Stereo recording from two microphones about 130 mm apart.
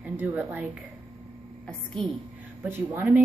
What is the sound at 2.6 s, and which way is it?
Speech, 20° right (ahead or behind).